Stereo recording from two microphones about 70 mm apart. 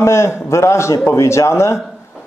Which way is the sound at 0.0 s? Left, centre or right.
Left.